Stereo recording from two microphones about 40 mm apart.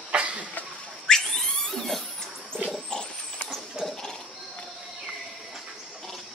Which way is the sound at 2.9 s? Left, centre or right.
Centre.